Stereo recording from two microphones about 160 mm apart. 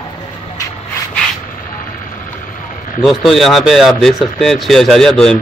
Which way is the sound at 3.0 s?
Centre (ahead or behind).